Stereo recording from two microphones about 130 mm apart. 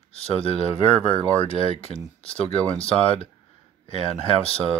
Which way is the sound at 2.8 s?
45° left (ahead or behind).